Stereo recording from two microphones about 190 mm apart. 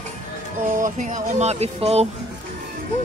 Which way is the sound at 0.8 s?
40° right (ahead or behind).